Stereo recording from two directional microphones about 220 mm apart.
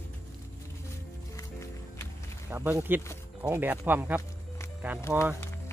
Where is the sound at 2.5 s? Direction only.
10° right (ahead or behind).